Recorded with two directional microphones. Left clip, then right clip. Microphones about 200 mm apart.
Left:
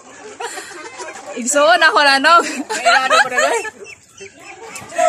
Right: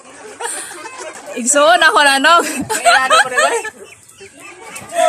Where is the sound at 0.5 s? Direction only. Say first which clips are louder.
Right 1 dB; 10° right (ahead or behind).